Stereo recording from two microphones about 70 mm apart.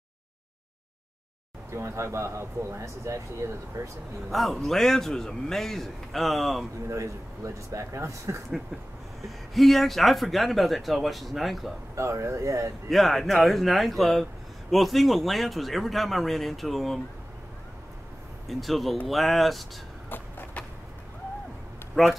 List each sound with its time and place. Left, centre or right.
1.7 s speech: right
4.3 s speech: centre
6.9 s speech: right
9.2 s speech: centre
11.9 s speech: right
12.9 s speech: centre
18.5 s speech: centre
20.1 s vehicle: left
22.0 s speech: centre